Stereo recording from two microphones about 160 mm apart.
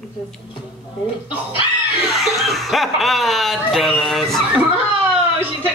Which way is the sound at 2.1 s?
Centre (ahead or behind).